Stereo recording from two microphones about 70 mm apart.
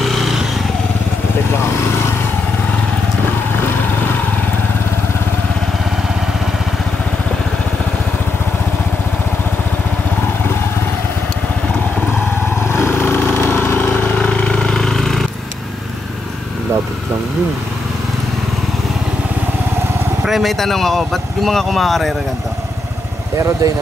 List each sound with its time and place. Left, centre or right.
0.0 s vehicle: centre
12.6 s lawn mower: left
14.2 s vehicle: centre
20.2 s speech: centre
23.3 s speech: right